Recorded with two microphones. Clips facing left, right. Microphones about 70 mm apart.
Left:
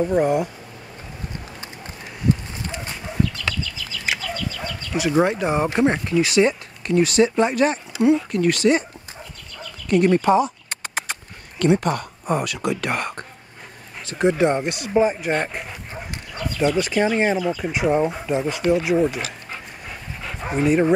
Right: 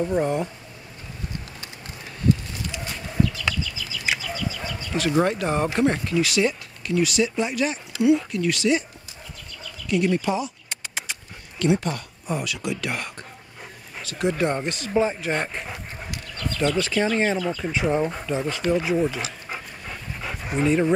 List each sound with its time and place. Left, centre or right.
0.0 s speech: centre
2.5 s a sound: left
3.2 s chicken: centre
4.9 s speech: centre
6.9 s speech: left
9.8 s speech: left
14.0 s speech: left
14.6 s speech: centre
16.3 s speech: centre
19.9 s dog: centre
20.5 s speech: centre